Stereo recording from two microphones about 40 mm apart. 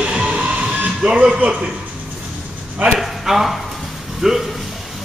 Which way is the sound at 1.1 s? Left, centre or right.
Right.